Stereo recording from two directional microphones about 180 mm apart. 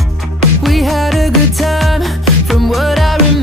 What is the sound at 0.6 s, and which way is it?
Music, centre (ahead or behind).